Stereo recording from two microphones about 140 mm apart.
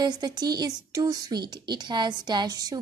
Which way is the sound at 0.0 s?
30° right (ahead or behind).